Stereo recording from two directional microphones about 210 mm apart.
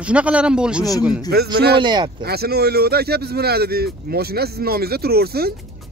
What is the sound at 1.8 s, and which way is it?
Speech, 20° right (ahead or behind).